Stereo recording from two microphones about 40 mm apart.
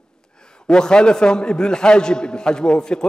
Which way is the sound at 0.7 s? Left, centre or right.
Centre.